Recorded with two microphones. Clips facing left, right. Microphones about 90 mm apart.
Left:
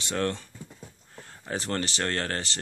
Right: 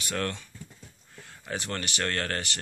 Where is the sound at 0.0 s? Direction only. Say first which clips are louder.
Left 3 dB; 25° left (ahead or behind).